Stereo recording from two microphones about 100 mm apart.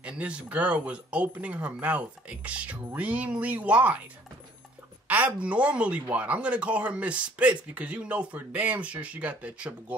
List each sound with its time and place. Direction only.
0.0 s speech: 10° right (ahead or behind)
5.0 s speech: 15° right (ahead or behind)